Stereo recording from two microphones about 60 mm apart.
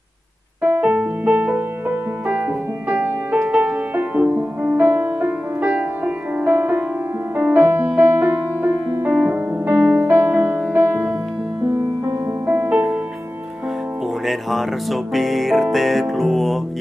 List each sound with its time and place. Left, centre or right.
0.7 s music: centre
9.0 s piano: right
9.8 s music: centre
10.0 s music: right
12.6 s music: centre
14.2 s music: centre